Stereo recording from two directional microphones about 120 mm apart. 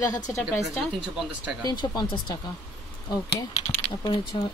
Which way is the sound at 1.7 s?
35° left (ahead or behind).